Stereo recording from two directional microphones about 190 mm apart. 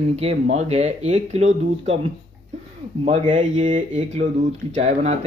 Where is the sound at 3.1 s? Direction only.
40° right (ahead or behind).